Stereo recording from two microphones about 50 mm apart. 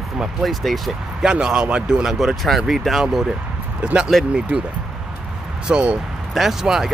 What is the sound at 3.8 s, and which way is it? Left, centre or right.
Speech, right.